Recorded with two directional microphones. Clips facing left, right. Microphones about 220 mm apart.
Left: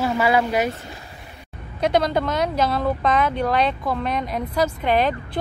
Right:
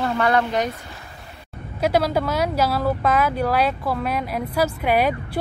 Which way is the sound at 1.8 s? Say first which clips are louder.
Even; 5° right (ahead or behind).